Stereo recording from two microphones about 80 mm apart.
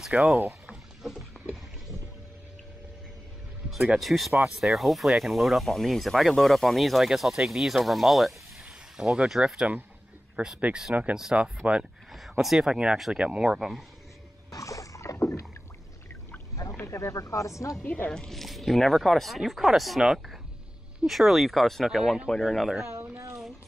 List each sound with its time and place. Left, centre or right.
0.1 s speech: centre
0.5 s rowboat: centre
3.7 s speech: centre
12.1 s speech: centre
14.5 s rowboat: left
16.3 s rowboat: left
16.8 s speech: left
17.8 s speech: left
18.1 s speech: centre
23.0 s a sound: right